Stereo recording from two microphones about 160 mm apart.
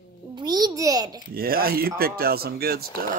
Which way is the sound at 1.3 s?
65° right (ahead or behind).